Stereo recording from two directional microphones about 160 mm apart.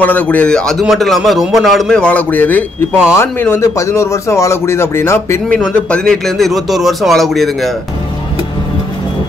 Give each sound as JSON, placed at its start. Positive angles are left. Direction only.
{"t": 0.0, "sound": "a man's voice", "side_deg": 10}
{"t": 5.6, "sound": "a man's voice", "side_deg": 5}